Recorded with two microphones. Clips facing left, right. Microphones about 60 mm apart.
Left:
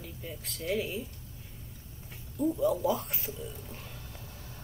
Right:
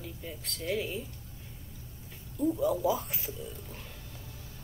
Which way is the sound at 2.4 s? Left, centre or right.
Centre.